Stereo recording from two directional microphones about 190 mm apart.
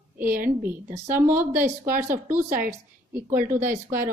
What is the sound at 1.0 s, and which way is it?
Speech, 10° right (ahead or behind).